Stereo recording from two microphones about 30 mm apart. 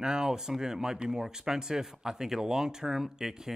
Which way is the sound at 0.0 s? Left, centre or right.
Right.